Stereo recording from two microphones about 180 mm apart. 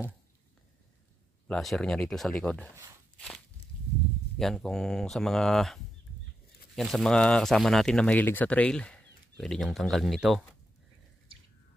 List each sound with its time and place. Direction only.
1.5 s speech: centre (ahead or behind)
3.2 s walk: 5° left (ahead or behind)
4.4 s speech: centre (ahead or behind)